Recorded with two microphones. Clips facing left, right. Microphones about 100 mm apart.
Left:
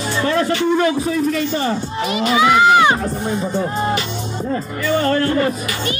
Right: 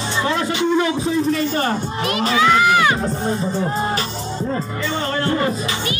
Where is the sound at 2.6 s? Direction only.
25° left (ahead or behind).